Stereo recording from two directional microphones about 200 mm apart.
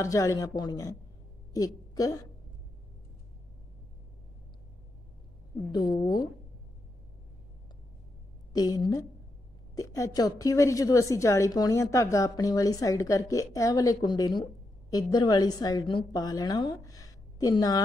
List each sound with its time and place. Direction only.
0.0 s a woman's voice: 15° left (ahead or behind)
5.7 s speech: 20° left (ahead or behind)
8.5 s a woman's voice: 20° left (ahead or behind)